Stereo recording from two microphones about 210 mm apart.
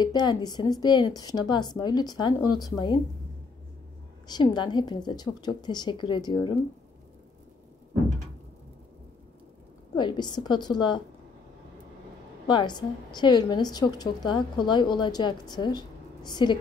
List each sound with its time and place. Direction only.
0.0 s a woman's voice: 20° left (ahead or behind)
4.3 s a woman's voice: 20° left (ahead or behind)
9.9 s a woman's voice: 20° left (ahead or behind)
12.4 s a woman's voice: 20° left (ahead or behind)